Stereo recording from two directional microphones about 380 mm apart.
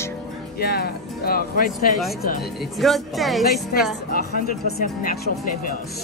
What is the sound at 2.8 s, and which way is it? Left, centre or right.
Speech, centre.